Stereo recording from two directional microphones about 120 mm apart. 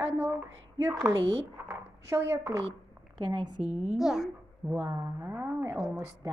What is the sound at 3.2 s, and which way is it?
Speech, 40° right (ahead or behind).